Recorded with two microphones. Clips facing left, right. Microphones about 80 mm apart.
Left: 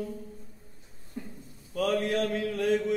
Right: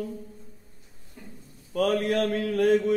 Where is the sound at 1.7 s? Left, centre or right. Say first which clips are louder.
Right 3 dB; right.